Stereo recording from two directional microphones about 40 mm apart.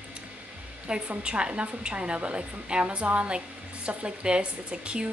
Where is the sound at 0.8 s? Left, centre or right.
Right.